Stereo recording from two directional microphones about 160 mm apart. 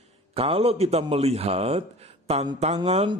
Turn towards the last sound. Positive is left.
turn(degrees=-45)  # may be behind; listen again after turning